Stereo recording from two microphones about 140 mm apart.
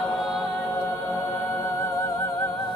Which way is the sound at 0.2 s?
Centre (ahead or behind).